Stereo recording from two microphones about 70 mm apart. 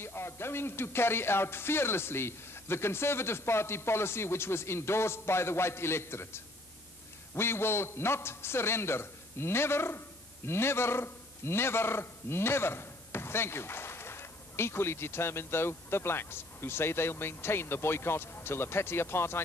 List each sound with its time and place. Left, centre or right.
0.0 s a man's voice: left